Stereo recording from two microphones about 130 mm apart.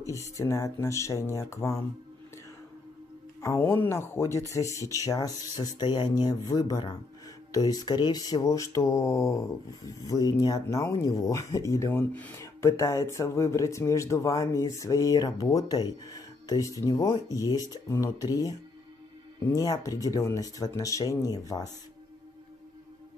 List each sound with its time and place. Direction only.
0.1 s speech: 25° left (ahead or behind)
3.3 s speech: 20° left (ahead or behind)